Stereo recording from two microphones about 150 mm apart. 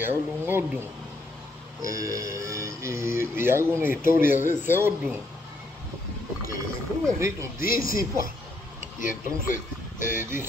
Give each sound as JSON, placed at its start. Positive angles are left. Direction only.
{"t": 0.0, "sound": "a man's voice", "side_deg": -15}
{"t": 7.1, "sound": "speech", "side_deg": -20}
{"t": 9.0, "sound": "speech", "side_deg": 60}